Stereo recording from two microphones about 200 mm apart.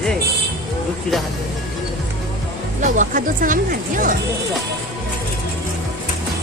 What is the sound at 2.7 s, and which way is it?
Speech, 40° right (ahead or behind).